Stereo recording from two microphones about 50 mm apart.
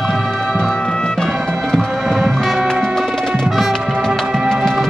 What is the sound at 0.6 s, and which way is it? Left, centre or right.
Music, centre.